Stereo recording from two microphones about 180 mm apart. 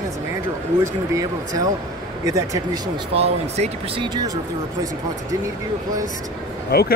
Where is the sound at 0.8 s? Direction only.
20° right (ahead or behind).